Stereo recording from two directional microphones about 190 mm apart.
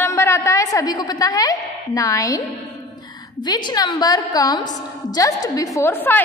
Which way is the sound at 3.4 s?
20° left (ahead or behind).